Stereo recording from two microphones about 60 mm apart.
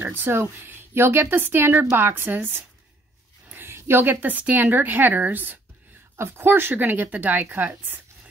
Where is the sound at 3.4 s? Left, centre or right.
Right.